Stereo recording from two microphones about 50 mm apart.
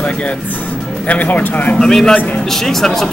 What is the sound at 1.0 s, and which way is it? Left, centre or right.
Speech, left.